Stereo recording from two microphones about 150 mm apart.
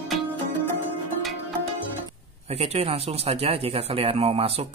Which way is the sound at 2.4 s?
45° right (ahead or behind).